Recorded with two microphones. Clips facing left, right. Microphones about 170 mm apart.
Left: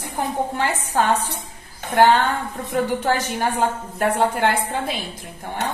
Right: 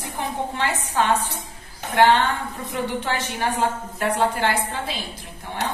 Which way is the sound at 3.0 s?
40° left (ahead or behind).